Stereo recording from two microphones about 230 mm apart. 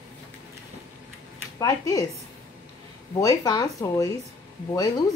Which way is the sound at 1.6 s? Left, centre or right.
Centre.